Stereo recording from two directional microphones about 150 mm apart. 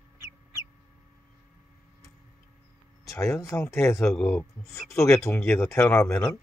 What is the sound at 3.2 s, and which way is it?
Speech, 20° left (ahead or behind).